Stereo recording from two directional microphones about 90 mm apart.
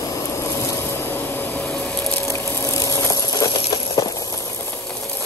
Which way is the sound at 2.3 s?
40° left (ahead or behind).